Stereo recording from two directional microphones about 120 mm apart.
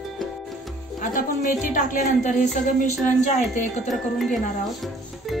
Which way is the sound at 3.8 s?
Centre (ahead or behind).